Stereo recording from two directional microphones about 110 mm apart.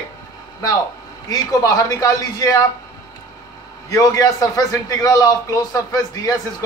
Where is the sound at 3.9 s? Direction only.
30° left (ahead or behind).